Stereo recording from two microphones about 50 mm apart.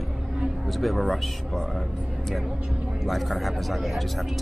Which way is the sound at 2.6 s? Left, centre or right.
Right.